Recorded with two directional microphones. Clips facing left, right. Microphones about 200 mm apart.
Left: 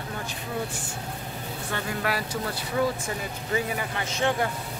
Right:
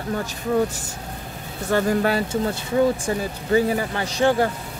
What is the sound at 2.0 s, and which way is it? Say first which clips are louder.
Speech: right 8 dB; 25° right (ahead or behind).